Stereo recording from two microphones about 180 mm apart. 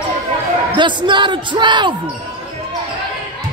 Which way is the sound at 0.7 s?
25° right (ahead or behind).